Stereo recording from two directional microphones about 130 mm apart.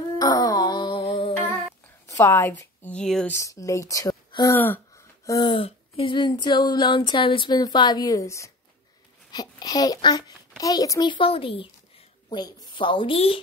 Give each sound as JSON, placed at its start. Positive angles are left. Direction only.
{"t": 0.2, "sound": "music", "side_deg": 30}
{"t": 2.0, "sound": "a woman's voice", "side_deg": 20}
{"t": 2.9, "sound": "speech", "side_deg": 5}
{"t": 3.3, "sound": "speech", "side_deg": 25}
{"t": 4.6, "sound": "a sound", "side_deg": 15}
{"t": 5.4, "sound": "a sound", "side_deg": 40}